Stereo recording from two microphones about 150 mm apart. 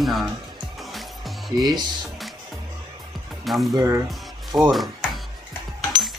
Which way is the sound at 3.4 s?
Centre (ahead or behind).